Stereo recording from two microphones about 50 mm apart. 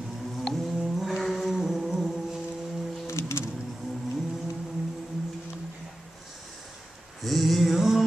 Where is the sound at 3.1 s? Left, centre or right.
Left.